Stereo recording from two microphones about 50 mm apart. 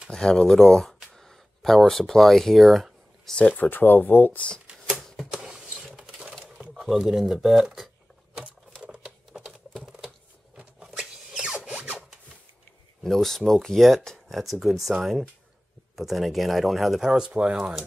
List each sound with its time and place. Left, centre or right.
0.1 s speech: centre
1.1 s a sound: centre
3.5 s speech: left
5.0 s typewriter: centre
5.3 s a sound: centre
7.0 s speech: centre
8.8 s typing: centre
11.0 s a sound: centre
13.0 s speech: centre
17.1 s speech: centre